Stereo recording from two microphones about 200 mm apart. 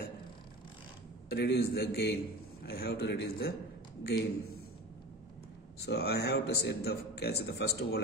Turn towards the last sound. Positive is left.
turn(degrees=55)  # may be behind; listen again after turning